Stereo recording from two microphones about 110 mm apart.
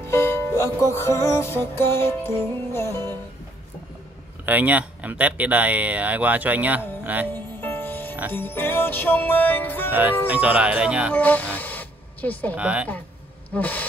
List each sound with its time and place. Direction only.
0.1 s music: 20° left (ahead or behind)
4.5 s speech: 15° right (ahead or behind)
7.0 s music: 15° right (ahead or behind)
7.3 s music: 20° left (ahead or behind)
9.8 s speech: 15° right (ahead or behind)
11.1 s speech: 15° left (ahead or behind)
12.5 s speech: 10° right (ahead or behind)
13.5 s a sound: 15° left (ahead or behind)